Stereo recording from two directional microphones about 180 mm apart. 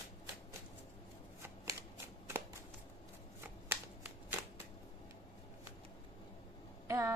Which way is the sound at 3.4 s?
10° right (ahead or behind).